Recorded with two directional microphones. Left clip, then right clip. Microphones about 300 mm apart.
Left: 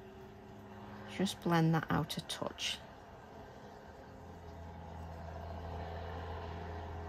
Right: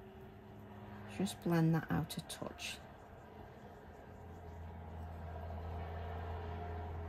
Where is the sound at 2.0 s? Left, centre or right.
Centre.